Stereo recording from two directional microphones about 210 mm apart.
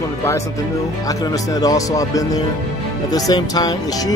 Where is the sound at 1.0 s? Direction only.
15° left (ahead or behind).